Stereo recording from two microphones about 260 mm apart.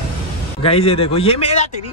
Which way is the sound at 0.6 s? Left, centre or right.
Left.